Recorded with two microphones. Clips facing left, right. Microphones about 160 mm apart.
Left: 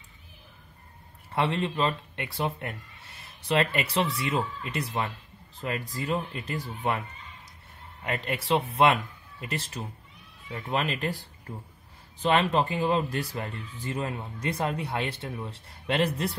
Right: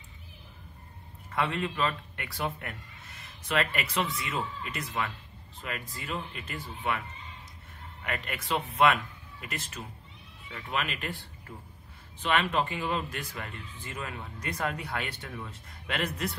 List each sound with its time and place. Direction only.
1.3 s a man's voice: 30° left (ahead or behind)